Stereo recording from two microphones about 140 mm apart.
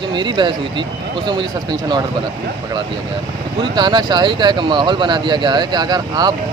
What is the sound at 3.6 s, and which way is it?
Speech, 30° right (ahead or behind).